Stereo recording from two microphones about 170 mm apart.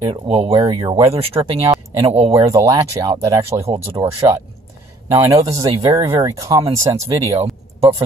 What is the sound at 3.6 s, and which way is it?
Speech, 35° right (ahead or behind).